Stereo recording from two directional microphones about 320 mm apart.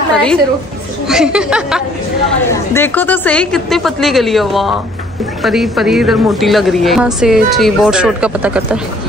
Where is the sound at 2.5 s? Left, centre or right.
Centre.